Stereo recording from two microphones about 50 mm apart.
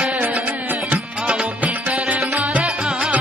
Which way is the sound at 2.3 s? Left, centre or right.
Right.